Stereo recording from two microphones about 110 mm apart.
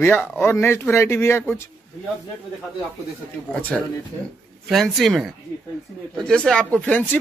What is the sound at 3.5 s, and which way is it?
Speech, 15° left (ahead or behind).